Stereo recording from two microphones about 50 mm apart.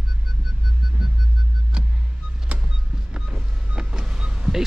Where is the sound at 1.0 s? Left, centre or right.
Centre.